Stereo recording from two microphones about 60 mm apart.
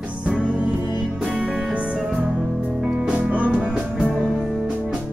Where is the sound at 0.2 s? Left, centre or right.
Centre.